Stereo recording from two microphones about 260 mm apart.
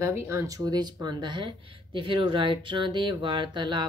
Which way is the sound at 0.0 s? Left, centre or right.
Centre.